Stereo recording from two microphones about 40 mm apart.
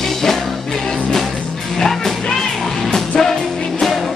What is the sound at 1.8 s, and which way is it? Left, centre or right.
Music, centre.